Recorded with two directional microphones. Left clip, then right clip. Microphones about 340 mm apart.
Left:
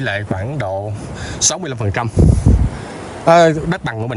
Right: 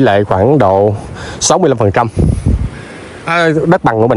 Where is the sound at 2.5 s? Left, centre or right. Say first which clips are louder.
Left 1 dB; right.